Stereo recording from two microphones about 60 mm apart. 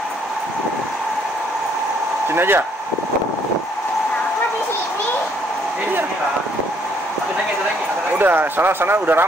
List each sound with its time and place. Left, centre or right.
2.3 s speech: right
8.2 s speech: right